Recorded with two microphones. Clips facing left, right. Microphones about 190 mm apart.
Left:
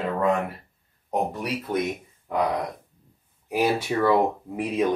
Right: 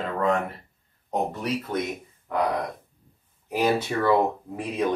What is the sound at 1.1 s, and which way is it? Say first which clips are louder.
Speech: left 1 dB; 10° left (ahead or behind).